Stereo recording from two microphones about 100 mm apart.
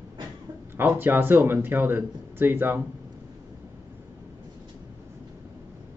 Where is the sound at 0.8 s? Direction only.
20° right (ahead or behind).